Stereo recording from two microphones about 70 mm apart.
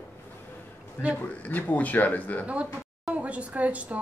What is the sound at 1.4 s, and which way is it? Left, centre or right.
Speech, left.